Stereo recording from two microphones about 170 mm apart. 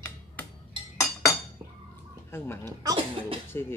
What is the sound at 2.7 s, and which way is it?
Speech, 25° right (ahead or behind).